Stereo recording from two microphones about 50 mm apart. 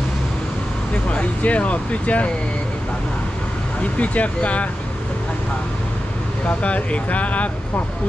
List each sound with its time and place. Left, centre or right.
1.1 s speech: left
3.8 s speech: left
6.6 s speech: left